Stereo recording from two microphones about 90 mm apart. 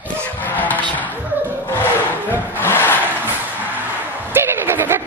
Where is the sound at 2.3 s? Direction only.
25° left (ahead or behind).